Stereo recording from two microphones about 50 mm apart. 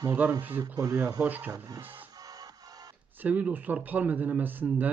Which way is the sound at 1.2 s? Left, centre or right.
Right.